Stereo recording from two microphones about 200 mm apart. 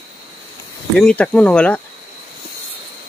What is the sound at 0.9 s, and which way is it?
Speech, 5° left (ahead or behind).